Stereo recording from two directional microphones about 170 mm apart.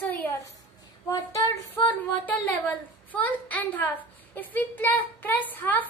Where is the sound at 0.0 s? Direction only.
10° left (ahead or behind).